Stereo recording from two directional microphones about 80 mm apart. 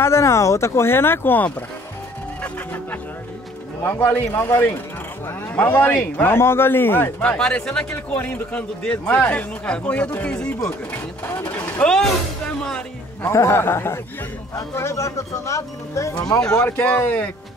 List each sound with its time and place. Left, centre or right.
0.0 s speech: left
2.4 s music: left
3.9 s speech: left
7.3 s a man's voice: centre
10.9 s speech: left
11.8 s a man's voice: centre
13.2 s speech: left
16.3 s a man's voice: centre
16.6 s speech: left